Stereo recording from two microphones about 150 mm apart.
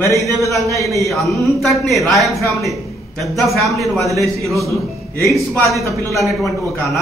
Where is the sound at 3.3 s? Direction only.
Centre (ahead or behind).